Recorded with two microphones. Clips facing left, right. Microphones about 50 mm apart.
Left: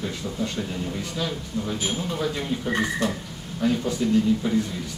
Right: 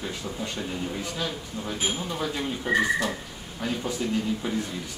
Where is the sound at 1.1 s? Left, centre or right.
Centre.